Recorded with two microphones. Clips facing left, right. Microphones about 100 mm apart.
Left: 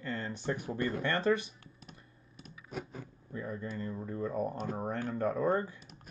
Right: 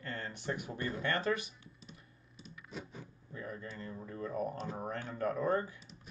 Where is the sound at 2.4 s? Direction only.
55° left (ahead or behind).